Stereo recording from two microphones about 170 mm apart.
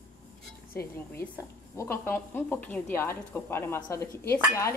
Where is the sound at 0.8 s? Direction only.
15° left (ahead or behind).